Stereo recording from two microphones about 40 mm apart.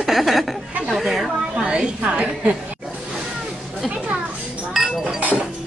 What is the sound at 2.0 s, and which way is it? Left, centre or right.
Speech, right.